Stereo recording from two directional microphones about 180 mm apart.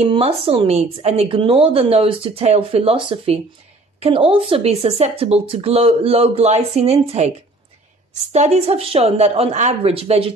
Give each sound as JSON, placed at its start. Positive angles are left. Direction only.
{"t": 0.0, "sound": "speech", "side_deg": -30}